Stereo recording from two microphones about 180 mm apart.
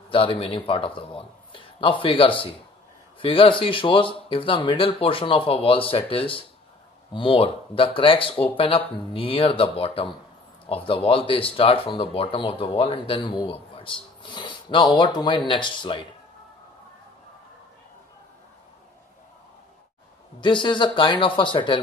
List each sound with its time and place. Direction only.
0.1 s speech: 30° left (ahead or behind)
20.3 s speech: 25° left (ahead or behind)